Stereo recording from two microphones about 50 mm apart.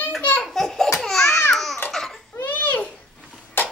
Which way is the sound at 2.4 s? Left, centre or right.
Left.